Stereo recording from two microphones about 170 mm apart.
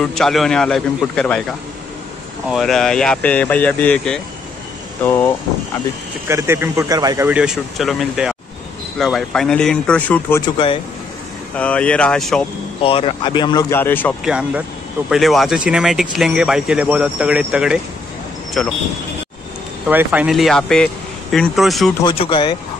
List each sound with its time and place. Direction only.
0.0 s speech: centre (ahead or behind)
2.5 s speech: centre (ahead or behind)
6.2 s speech: 15° right (ahead or behind)
7.2 s speech: 5° right (ahead or behind)
10.4 s speech: 30° left (ahead or behind)
11.5 s speech: 5° left (ahead or behind)
12.8 s speech: 30° left (ahead or behind); by 14.1 s 10° left (ahead or behind)
14.2 s speech: 5° right (ahead or behind)
19.9 s speech: 10° right (ahead or behind)
22.0 s speech: 30° left (ahead or behind)